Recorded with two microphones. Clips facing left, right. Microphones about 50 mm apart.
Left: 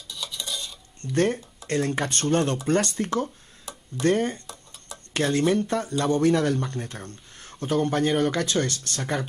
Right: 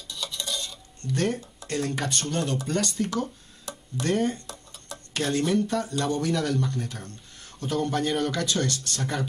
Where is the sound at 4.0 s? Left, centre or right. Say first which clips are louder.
Left 3 dB; left.